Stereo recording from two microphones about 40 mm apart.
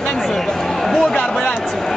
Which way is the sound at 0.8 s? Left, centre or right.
Centre.